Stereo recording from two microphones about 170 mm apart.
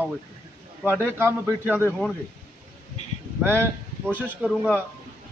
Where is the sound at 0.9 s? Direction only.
15° right (ahead or behind).